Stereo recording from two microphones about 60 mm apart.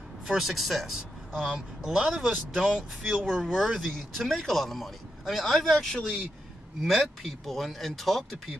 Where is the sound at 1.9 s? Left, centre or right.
Centre.